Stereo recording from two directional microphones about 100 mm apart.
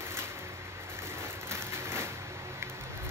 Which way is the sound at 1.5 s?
25° right (ahead or behind).